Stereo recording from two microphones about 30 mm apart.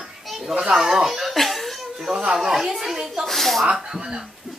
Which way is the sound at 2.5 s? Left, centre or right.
Centre.